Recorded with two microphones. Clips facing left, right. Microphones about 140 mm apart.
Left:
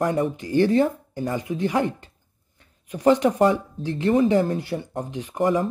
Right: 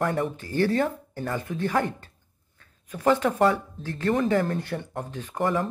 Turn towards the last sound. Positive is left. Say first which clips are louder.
# left 4 dB
turn(degrees=15)  # may be behind; listen again after turning